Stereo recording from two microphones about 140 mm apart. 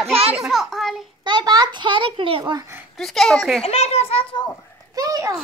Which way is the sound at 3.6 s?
45° left (ahead or behind).